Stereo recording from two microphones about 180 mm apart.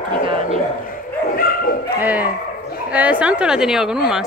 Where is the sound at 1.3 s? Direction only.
55° left (ahead or behind).